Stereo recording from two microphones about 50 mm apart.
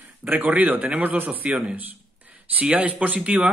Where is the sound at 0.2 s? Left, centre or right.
Right.